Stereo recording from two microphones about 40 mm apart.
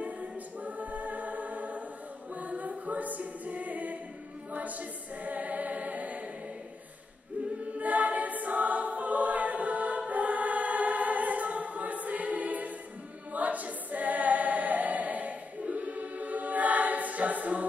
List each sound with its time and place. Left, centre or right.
0.0 s choir: right
2.3 s music: right
4.5 s choir: right
7.7 s choir: right